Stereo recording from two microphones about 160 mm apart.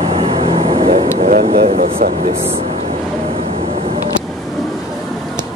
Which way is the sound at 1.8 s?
55° right (ahead or behind).